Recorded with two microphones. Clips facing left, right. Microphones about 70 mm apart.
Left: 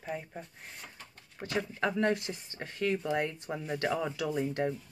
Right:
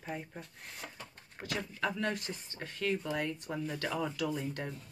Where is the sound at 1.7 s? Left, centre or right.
Left.